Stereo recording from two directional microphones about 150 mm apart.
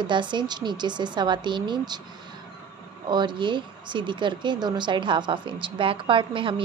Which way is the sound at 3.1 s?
30° right (ahead or behind).